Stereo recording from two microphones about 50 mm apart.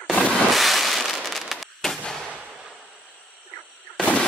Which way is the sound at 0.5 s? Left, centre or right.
Centre.